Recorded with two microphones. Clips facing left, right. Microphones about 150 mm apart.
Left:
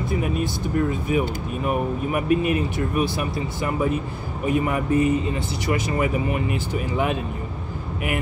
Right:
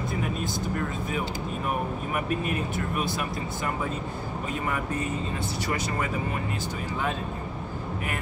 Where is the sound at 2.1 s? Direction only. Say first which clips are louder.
Left 8 dB; 15° left (ahead or behind).